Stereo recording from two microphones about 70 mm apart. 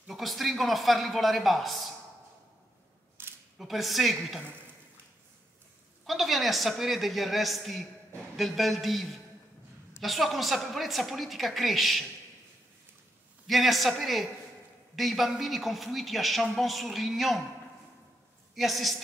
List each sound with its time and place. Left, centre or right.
0.1 s a woman's voice: centre
3.2 s a sound: right
3.5 s a woman's voice: centre
6.0 s a woman's voice: centre
10.0 s a woman's voice: centre
13.5 s a woman's voice: centre
18.5 s a woman's voice: centre